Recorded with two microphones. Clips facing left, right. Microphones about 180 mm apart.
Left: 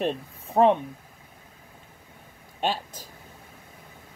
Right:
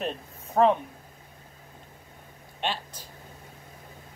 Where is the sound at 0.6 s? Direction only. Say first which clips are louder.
Left 2 dB; 25° left (ahead or behind).